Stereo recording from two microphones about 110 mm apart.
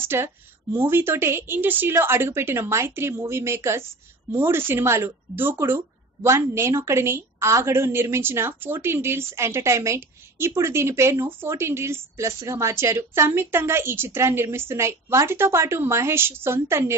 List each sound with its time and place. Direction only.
0.0 s a woman's voice: 20° right (ahead or behind)